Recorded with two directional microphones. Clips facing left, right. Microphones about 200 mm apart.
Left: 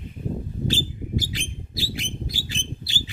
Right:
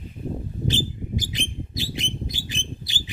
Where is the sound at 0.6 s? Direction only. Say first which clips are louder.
Right 2 dB; 20° right (ahead or behind).